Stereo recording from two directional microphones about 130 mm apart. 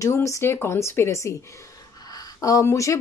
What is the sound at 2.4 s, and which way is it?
Speech, 25° left (ahead or behind).